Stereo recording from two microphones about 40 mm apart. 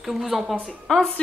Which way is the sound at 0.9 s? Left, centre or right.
Left.